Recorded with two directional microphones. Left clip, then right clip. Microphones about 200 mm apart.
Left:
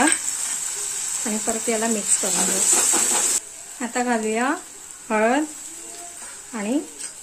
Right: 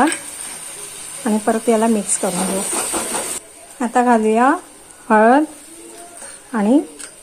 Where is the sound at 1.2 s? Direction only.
15° right (ahead or behind).